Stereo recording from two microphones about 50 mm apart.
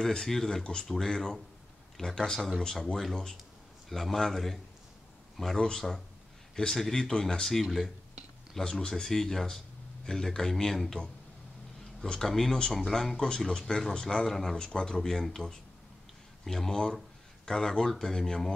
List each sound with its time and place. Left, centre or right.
0.0 s speech: centre
5.6 s speech: centre
8.5 s speech: centre
12.0 s speech: centre
13.5 s speech: centre